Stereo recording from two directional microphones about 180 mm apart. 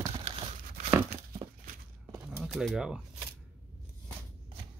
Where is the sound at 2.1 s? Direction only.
5° right (ahead or behind).